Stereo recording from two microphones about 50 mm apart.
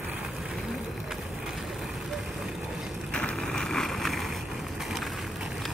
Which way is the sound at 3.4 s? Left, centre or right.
Centre.